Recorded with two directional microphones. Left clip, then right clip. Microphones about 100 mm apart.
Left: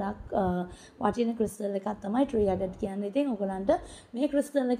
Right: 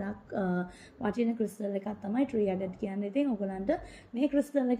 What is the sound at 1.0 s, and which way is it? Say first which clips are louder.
A woman's voice: left 4 dB; 30° left (ahead or behind).